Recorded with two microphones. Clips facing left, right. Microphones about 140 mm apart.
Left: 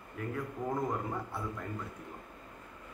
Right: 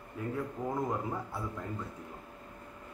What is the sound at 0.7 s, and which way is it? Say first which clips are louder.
Speech: right 1 dB; centre (ahead or behind).